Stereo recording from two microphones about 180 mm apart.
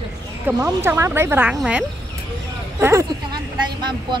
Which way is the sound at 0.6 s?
15° right (ahead or behind).